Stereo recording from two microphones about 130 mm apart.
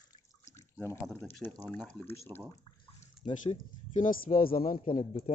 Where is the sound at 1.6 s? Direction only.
10° left (ahead or behind).